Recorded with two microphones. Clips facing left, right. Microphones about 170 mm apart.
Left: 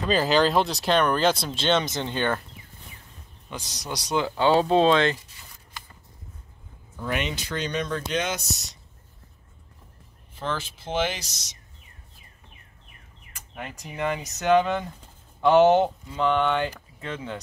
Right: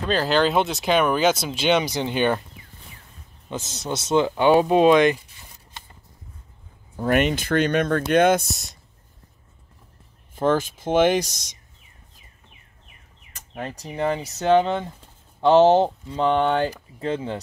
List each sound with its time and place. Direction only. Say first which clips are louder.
0.1 s speech: right 1 dB; centre (ahead or behind); by 2.4 s 15° right (ahead or behind)
3.4 s speech: right 6 dB; 25° right (ahead or behind)
7.0 s speech: right 9 dB; 50° right (ahead or behind)
10.3 s speech: right 10 dB; 50° right (ahead or behind)
13.6 s speech: right 4 dB; 35° right (ahead or behind)